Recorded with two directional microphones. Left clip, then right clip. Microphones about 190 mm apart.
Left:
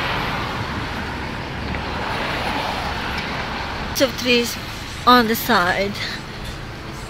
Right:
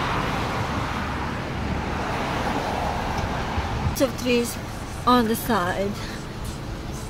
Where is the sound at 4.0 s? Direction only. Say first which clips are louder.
Left 5 dB; 5° left (ahead or behind).